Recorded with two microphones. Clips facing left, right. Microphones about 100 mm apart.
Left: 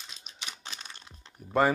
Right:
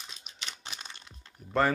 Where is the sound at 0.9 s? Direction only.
25° left (ahead or behind).